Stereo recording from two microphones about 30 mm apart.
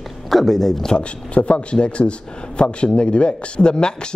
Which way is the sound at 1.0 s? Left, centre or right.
Left.